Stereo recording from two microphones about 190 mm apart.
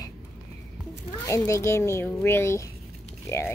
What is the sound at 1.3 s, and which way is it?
Speech, 15° left (ahead or behind).